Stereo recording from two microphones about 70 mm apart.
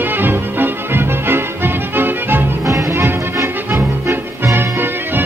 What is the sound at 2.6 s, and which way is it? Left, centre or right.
Music, right.